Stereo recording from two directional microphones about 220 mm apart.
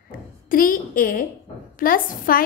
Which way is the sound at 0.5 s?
40° left (ahead or behind).